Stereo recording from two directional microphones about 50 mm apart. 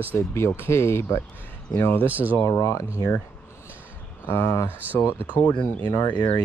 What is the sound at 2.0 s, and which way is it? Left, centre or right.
Speech, right.